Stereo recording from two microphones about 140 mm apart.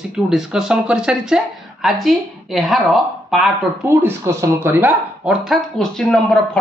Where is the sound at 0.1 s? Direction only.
5° right (ahead or behind).